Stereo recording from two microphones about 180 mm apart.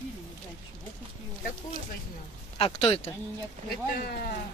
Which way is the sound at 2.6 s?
35° left (ahead or behind).